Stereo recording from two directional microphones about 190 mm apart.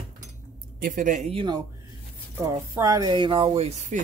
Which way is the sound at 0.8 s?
45° right (ahead or behind).